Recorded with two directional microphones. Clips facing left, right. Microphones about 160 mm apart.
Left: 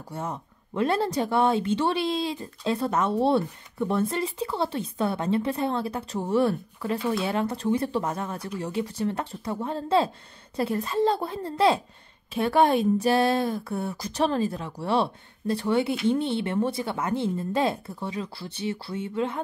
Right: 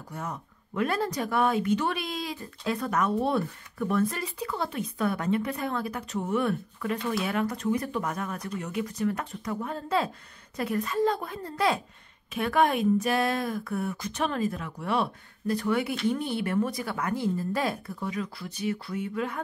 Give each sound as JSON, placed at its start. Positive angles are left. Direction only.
{"t": 0.1, "sound": "speech", "side_deg": 30}